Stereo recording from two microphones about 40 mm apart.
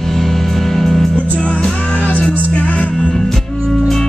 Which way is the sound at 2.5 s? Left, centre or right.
Left.